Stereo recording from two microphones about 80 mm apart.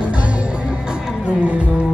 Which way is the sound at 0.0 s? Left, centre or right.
Centre.